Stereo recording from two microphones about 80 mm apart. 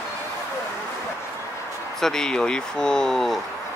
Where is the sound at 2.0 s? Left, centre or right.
Centre.